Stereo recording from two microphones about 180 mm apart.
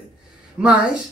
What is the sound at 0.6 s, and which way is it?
Speech, 5° right (ahead or behind).